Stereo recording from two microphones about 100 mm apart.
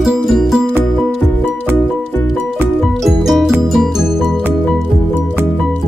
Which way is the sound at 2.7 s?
Centre (ahead or behind).